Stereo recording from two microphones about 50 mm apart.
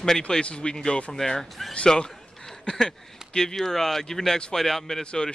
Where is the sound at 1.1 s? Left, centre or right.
Centre.